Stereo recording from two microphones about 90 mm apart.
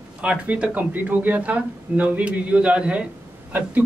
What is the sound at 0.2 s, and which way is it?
Speech, 15° right (ahead or behind).